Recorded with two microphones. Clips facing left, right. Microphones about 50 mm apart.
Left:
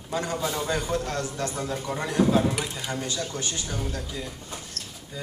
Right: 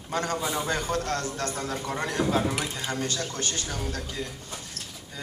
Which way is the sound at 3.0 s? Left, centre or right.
Right.